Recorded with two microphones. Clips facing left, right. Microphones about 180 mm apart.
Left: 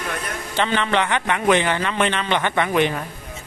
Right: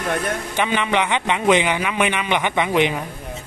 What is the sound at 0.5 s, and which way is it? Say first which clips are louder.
A man's voice: left 1 dB; 15° right (ahead or behind).